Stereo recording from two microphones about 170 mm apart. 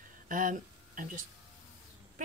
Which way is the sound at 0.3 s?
55° right (ahead or behind).